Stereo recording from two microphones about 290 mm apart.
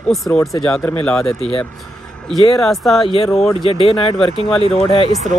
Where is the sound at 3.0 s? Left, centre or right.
Centre.